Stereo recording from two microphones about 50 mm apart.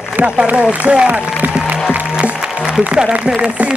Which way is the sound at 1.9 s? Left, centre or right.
Right.